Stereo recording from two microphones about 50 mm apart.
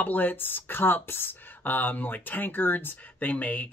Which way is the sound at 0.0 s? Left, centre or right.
Left.